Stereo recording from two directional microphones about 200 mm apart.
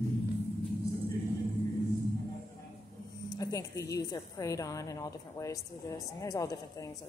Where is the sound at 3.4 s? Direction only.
15° left (ahead or behind).